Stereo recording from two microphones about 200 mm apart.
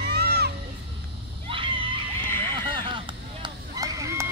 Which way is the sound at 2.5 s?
25° right (ahead or behind).